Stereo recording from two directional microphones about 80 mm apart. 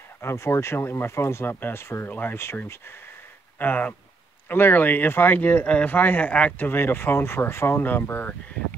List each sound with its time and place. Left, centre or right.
0.2 s speech: left
3.5 s speech: left
6.7 s speech: left